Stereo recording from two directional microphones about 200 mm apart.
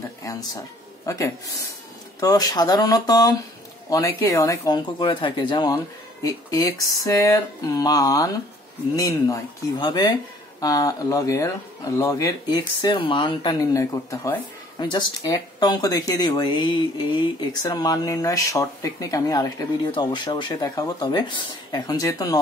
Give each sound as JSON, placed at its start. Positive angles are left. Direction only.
{"t": 0.2, "sound": "speech", "side_deg": 15}